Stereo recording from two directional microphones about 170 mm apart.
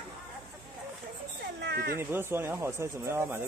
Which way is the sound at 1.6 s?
70° right (ahead or behind).